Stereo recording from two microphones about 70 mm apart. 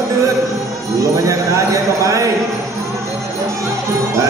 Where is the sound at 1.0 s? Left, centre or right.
Right.